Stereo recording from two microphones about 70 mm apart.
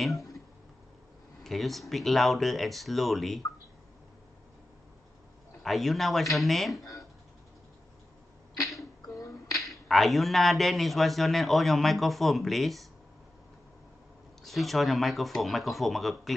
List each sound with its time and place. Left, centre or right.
1.4 s a man's voice: centre
5.6 s a man's voice: centre
8.7 s finger snapping: left
9.7 s a man's voice: centre
14.4 s a man's voice: centre